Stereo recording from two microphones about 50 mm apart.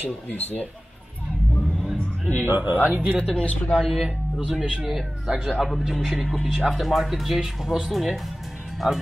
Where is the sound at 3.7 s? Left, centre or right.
Centre.